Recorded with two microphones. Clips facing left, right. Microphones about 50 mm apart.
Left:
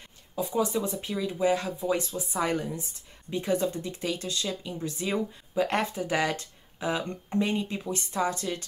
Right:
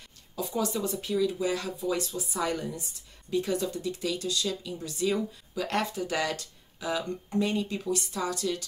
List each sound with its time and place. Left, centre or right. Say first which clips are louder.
0.4 s speech: left 3 dB; centre